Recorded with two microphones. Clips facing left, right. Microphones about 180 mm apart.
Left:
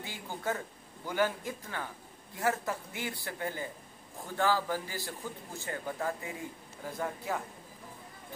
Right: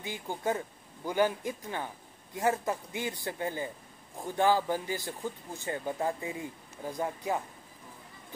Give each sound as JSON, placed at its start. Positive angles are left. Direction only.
{"t": 0.0, "sound": "speech", "side_deg": -20}